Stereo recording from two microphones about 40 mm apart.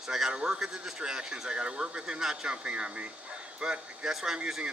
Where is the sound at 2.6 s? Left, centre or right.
Right.